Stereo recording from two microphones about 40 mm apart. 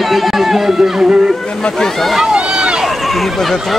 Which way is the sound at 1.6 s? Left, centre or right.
Left.